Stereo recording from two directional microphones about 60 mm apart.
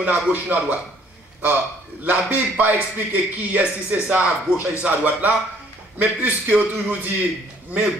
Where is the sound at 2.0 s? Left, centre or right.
Right.